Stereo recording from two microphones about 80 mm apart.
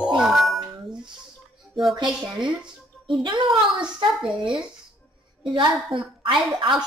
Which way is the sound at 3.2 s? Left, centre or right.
Right.